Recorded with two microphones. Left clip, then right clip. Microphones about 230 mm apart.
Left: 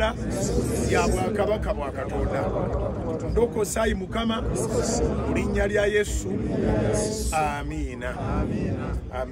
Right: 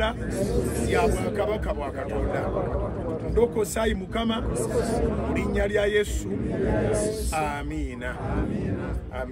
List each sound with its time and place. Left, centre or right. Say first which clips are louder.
0.8 s a man's voice: even; centre
3.3 s a man's voice: even; centre